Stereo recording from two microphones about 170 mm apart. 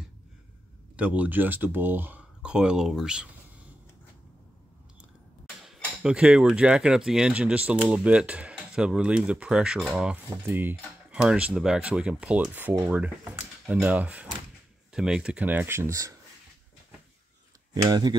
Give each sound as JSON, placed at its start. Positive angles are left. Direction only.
{"t": 0.9, "sound": "speech", "side_deg": -10}
{"t": 5.6, "sound": "speech", "side_deg": -5}
{"t": 17.8, "sound": "speech", "side_deg": -25}